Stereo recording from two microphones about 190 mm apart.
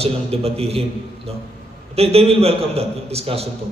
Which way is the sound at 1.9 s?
30° right (ahead or behind).